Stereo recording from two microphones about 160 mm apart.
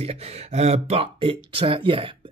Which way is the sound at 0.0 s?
40° right (ahead or behind).